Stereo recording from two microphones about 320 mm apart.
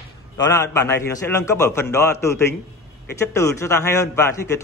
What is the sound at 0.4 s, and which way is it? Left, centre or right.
A man's voice, centre.